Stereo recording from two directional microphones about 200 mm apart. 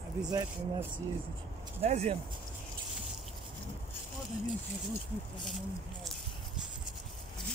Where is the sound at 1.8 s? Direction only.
30° right (ahead or behind).